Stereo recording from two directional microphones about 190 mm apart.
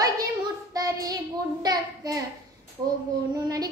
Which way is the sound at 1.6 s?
20° right (ahead or behind).